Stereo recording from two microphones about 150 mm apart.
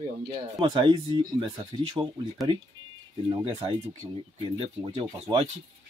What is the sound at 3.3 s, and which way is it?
Speech, 30° right (ahead or behind).